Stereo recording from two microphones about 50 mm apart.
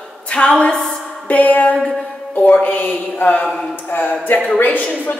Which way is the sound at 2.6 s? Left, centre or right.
Left.